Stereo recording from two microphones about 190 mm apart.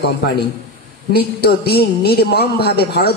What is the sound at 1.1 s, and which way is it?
A man's voice, 55° left (ahead or behind).